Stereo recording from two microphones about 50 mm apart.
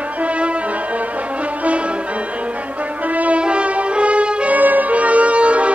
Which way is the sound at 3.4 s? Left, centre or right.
Right.